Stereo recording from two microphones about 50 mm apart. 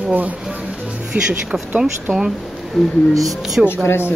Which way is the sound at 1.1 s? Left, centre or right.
Right.